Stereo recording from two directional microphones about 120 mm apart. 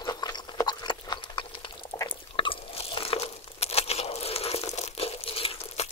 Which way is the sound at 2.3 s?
45° left (ahead or behind).